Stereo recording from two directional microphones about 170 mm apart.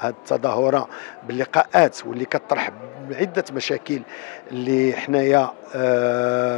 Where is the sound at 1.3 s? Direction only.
15° left (ahead or behind).